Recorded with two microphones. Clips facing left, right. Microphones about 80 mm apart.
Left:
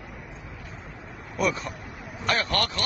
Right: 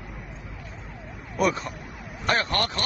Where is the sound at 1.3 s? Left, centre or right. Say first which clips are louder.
Right 2 dB; right.